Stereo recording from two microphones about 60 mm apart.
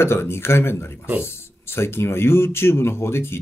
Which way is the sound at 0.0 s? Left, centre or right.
Left.